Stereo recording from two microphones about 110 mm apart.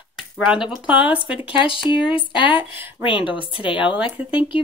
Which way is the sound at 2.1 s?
50° left (ahead or behind).